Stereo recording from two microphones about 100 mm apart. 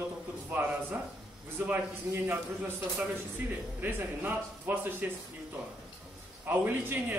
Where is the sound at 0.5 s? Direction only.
15° right (ahead or behind).